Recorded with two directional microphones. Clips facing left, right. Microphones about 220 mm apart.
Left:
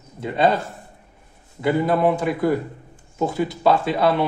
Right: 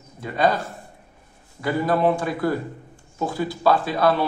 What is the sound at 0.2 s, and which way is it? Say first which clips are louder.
Speech: left 2 dB; 25° left (ahead or behind).